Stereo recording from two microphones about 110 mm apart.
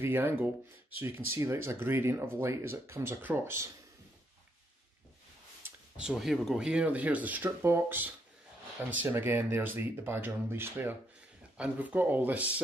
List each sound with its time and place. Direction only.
0.0 s speech: 20° right (ahead or behind)
5.9 s speech: 5° right (ahead or behind)